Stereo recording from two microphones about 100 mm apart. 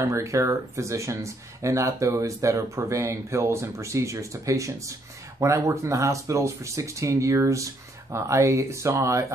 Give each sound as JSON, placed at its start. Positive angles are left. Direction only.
{"t": 0.0, "sound": "speech", "side_deg": -30}